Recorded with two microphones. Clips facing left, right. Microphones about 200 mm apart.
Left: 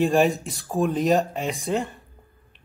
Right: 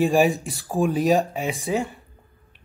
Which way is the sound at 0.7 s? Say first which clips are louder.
Right 1 dB; 10° right (ahead or behind).